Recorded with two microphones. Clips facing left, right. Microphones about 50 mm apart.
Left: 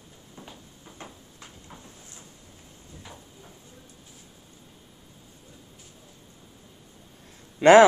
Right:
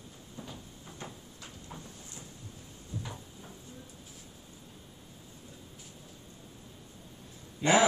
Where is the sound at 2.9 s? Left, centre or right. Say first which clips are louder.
Right 6 dB; left.